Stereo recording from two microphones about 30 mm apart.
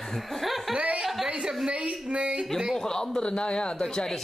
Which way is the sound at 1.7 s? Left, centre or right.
Right.